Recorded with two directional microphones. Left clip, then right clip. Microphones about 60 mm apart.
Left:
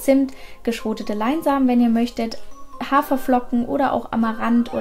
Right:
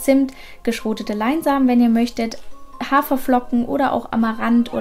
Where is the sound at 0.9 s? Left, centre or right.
Centre.